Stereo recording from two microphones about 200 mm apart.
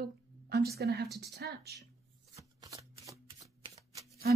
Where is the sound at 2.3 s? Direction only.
15° right (ahead or behind).